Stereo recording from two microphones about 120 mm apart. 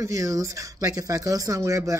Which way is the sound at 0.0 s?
25° right (ahead or behind).